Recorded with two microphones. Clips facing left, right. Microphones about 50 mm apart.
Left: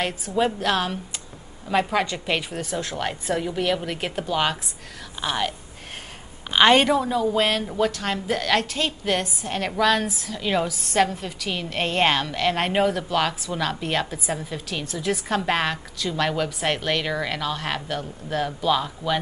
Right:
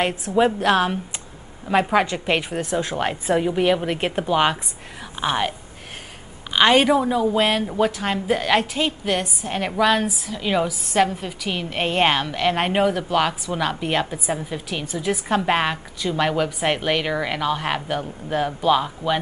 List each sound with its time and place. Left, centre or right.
0.0 s a woman's voice: centre
6.5 s a woman's voice: centre
9.0 s a woman's voice: centre